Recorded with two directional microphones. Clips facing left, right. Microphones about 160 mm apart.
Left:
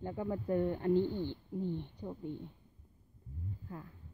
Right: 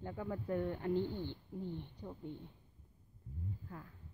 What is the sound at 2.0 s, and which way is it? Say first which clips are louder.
Speech: left 5 dB; 20° left (ahead or behind).